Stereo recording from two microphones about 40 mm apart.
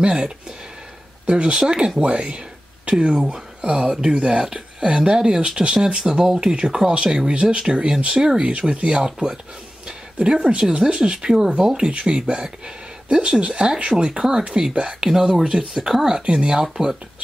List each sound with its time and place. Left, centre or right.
0.0 s speech: right
2.0 s speech: right
6.2 s speech: centre
6.5 s speech: right
8.4 s speech: right
10.8 s speech: centre
11.9 s speech: right
16.6 s speech: centre